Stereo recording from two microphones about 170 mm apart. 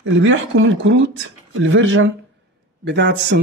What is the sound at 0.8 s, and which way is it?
Speech, 90° right.